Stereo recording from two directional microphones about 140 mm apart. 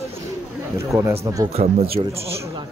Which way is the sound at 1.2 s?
25° right (ahead or behind).